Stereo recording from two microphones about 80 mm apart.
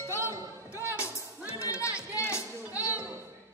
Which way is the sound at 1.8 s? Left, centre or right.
Left.